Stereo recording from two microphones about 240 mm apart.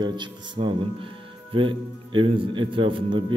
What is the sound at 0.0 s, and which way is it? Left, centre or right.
A man's voice, centre.